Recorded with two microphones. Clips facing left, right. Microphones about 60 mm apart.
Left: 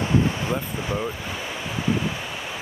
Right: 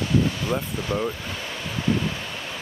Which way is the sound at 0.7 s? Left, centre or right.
Centre.